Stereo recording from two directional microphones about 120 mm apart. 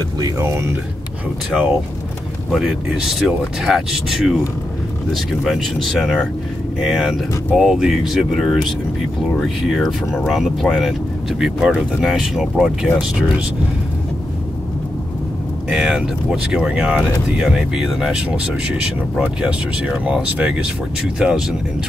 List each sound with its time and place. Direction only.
0.2 s speech: 25° right (ahead or behind)
2.5 s speech: centre (ahead or behind)
15.7 s speech: 10° right (ahead or behind)